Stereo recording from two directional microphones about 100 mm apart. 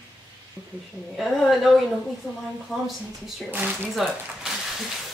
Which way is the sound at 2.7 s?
Centre (ahead or behind).